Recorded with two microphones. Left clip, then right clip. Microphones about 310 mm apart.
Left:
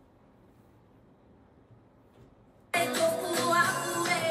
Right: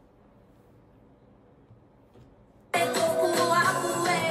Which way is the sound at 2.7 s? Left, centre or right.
Right.